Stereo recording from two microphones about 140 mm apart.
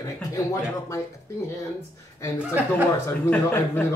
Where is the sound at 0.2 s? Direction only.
25° left (ahead or behind).